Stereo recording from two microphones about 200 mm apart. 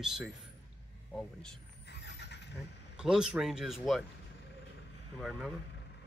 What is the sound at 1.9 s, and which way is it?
Vehicle, 60° left (ahead or behind).